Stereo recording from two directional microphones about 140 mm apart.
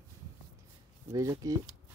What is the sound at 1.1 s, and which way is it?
Speech, 25° right (ahead or behind).